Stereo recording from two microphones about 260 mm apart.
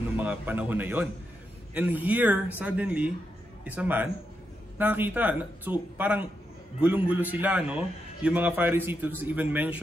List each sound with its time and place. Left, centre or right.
0.2 s a man's voice: centre